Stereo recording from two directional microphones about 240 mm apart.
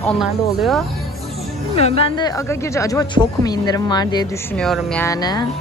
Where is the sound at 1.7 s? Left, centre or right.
Left.